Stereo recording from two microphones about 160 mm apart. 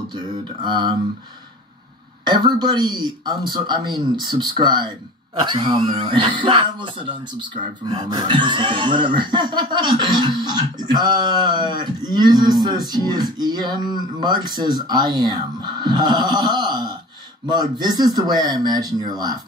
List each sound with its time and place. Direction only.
0.1 s speech: 30° right (ahead or behind)
2.2 s speech: 25° right (ahead or behind)